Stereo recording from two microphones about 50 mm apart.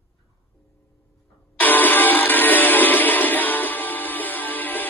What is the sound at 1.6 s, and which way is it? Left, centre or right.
Music, left.